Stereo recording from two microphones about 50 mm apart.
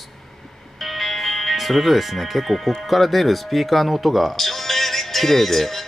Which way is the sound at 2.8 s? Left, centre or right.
Centre.